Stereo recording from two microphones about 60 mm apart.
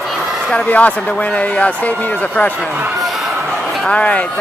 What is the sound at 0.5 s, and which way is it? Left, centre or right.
Speech, left.